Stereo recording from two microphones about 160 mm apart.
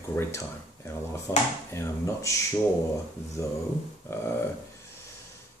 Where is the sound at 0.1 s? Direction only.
15° left (ahead or behind).